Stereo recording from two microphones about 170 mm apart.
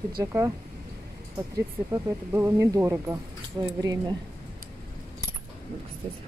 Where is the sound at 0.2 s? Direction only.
15° right (ahead or behind).